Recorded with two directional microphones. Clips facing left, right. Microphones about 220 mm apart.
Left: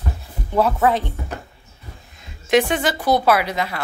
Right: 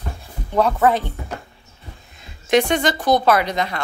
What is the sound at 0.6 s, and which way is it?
Speech, centre (ahead or behind).